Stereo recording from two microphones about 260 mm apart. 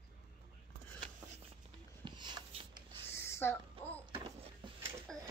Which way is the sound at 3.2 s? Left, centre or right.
Centre.